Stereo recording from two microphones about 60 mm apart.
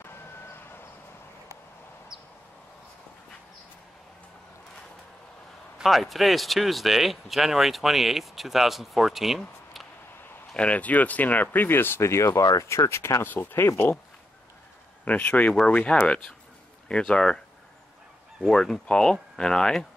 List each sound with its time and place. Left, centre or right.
5.8 s speech: centre
10.5 s speech: left
13.3 s speech: left
15.0 s speech: left
18.5 s speech: centre